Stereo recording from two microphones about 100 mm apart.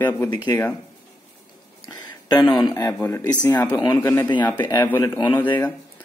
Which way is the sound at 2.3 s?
45° left (ahead or behind).